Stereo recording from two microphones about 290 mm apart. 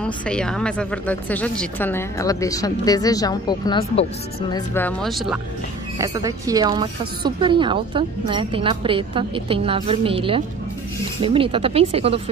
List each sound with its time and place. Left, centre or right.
0.0 s speech: centre
5.9 s a woman's voice: centre